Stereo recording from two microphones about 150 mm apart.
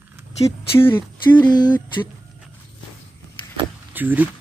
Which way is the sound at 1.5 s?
30° left (ahead or behind).